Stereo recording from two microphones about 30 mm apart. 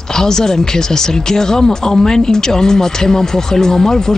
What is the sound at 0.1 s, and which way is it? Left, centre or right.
Speech, centre.